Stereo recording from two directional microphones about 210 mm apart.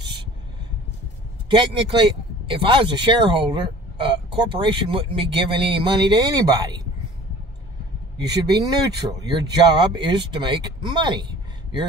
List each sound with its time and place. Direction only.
1.5 s speech: 25° right (ahead or behind)
8.5 s speech: 20° right (ahead or behind)